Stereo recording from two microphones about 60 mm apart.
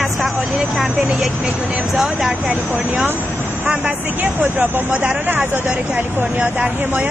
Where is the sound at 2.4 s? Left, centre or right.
Right.